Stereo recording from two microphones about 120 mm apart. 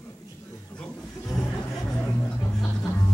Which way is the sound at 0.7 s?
5° left (ahead or behind).